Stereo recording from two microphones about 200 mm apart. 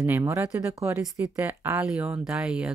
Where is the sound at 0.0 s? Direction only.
10° right (ahead or behind).